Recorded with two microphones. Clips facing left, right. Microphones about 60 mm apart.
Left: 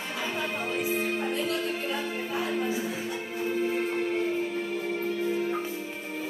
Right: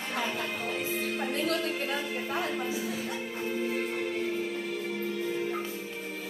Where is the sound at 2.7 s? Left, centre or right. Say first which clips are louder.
Left 2 dB; left.